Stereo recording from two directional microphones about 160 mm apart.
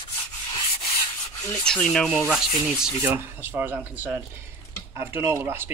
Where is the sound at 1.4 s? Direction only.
10° left (ahead or behind).